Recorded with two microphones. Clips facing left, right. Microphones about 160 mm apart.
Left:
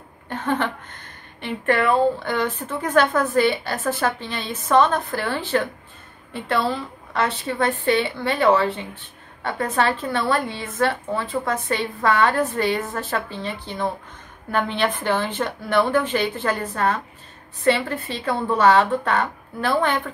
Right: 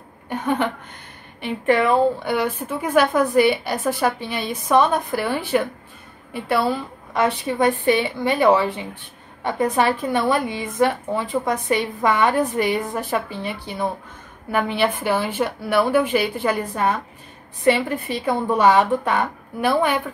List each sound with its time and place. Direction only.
0.3 s speech: 10° right (ahead or behind)